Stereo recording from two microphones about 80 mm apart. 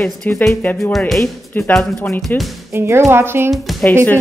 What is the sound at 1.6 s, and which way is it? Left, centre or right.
Speech, left.